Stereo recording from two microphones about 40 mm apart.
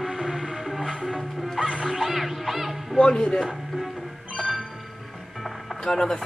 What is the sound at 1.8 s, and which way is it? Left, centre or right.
Music, centre.